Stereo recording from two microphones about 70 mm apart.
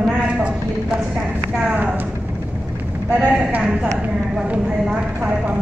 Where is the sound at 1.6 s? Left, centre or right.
Right.